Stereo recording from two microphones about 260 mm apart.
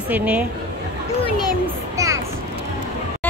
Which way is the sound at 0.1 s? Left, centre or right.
Centre.